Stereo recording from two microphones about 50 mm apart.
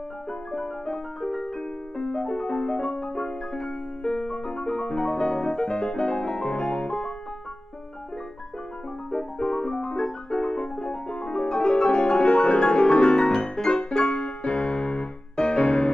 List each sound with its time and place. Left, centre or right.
0.5 s music: centre
3.0 s piano: centre
9.1 s piano: centre